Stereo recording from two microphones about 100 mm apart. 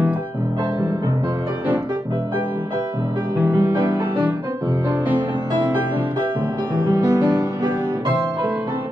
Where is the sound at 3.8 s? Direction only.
50° right (ahead or behind).